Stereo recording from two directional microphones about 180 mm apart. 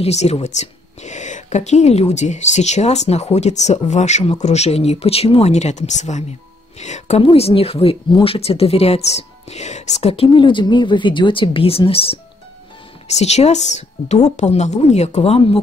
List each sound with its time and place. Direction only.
0.0 s speech: 35° left (ahead or behind)